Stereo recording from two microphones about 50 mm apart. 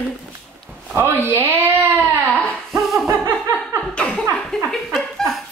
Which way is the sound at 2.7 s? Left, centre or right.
Centre.